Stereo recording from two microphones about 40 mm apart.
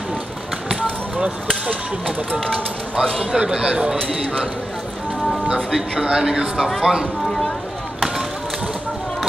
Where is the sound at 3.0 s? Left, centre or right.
Centre.